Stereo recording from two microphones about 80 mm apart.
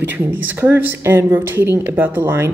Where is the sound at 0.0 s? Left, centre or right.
Right.